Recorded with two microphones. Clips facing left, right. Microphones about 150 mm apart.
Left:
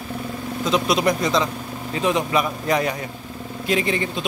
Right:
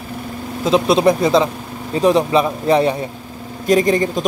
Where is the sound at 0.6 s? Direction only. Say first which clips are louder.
Right 7 dB; 30° right (ahead or behind).